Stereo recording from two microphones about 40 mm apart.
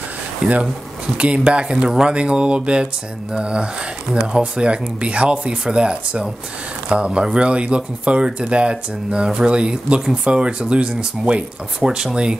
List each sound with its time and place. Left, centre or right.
0.4 s speech: centre
1.9 s speech: centre